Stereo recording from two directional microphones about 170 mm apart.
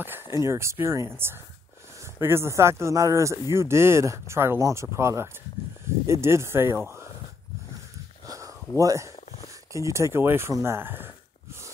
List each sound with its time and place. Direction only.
0.4 s speech: 15° right (ahead or behind)
8.3 s a sound: 20° right (ahead or behind)
9.7 s speech: 20° right (ahead or behind)